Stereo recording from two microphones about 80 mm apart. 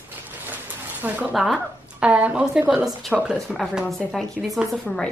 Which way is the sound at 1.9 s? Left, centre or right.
Centre.